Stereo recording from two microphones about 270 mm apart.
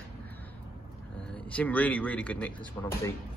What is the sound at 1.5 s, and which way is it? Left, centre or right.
Speech, centre.